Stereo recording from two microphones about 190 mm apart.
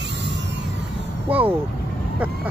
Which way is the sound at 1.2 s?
10° right (ahead or behind).